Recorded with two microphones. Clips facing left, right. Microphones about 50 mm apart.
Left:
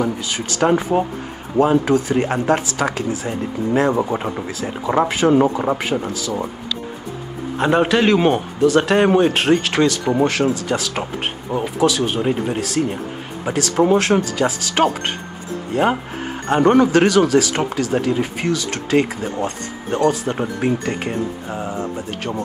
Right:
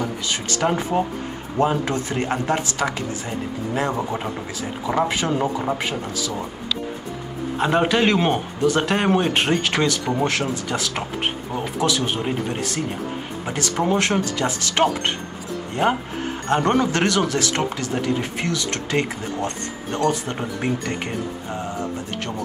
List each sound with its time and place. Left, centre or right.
0.0 s a man's voice: centre
7.5 s a man's voice: centre